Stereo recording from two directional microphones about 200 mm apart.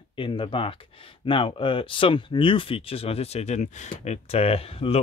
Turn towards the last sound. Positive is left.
turn(degrees=30)  # may be behind; listen again after turning